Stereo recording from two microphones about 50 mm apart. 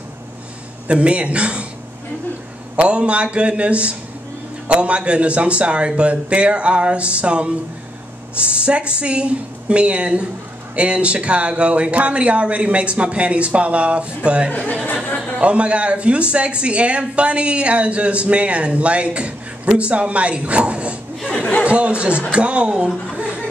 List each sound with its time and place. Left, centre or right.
0.8 s speech: right
2.7 s speech: right
14.7 s speech: left
15.3 s speech: right
21.3 s speech: left
21.6 s speech: right